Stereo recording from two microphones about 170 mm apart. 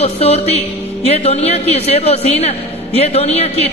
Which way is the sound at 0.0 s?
35° left (ahead or behind).